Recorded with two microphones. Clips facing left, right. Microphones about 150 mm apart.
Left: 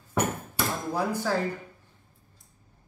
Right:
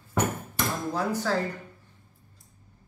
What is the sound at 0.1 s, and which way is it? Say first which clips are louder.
Hammer: even; 10° left (ahead or behind).